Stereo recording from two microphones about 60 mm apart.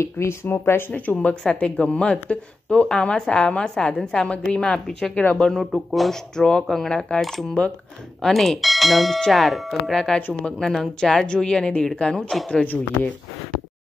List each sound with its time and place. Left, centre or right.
0.0 s speech: left
1.1 s speech: centre